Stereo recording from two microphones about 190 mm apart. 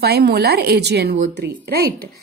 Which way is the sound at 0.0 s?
55° right (ahead or behind).